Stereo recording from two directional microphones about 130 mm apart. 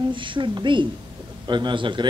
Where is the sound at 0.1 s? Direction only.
40° right (ahead or behind).